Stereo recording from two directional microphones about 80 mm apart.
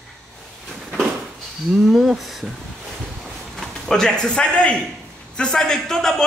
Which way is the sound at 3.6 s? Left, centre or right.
Centre.